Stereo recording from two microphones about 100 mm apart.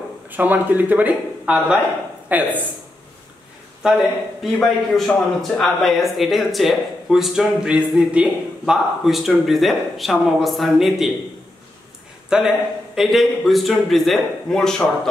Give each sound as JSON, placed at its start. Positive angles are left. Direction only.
{"t": 0.3, "sound": "speech", "side_deg": -15}
{"t": 3.8, "sound": "speech", "side_deg": 0}
{"t": 12.3, "sound": "speech", "side_deg": -5}